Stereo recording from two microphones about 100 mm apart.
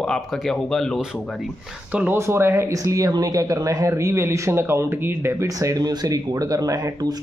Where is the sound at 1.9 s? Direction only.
15° right (ahead or behind).